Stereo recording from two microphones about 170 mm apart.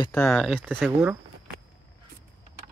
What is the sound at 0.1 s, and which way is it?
Speech, 10° left (ahead or behind).